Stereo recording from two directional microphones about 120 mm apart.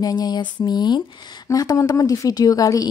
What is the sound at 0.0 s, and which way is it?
Speech, 35° left (ahead or behind).